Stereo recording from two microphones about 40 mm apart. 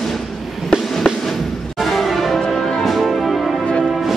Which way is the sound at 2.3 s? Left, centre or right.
Centre.